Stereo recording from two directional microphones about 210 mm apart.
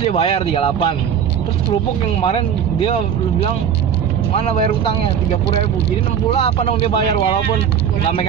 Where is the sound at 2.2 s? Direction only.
25° left (ahead or behind).